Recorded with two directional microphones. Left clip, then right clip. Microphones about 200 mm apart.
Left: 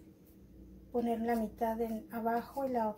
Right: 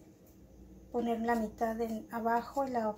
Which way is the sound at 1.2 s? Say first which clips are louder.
Right 2 dB; 25° right (ahead or behind).